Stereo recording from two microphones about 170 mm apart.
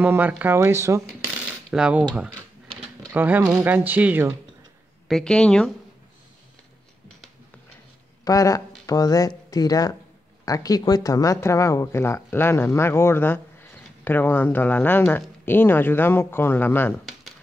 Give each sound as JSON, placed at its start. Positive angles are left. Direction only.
{"t": 0.0, "sound": "speech", "side_deg": -10}
{"t": 1.2, "sound": "coin", "side_deg": -5}
{"t": 3.1, "sound": "speech", "side_deg": -10}
{"t": 5.0, "sound": "speech", "side_deg": 5}
{"t": 8.2, "sound": "speech", "side_deg": 20}